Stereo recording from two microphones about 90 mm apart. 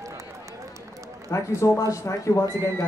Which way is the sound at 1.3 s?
35° left (ahead or behind).